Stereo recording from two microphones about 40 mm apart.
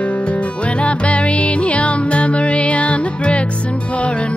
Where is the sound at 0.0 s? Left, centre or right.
Left.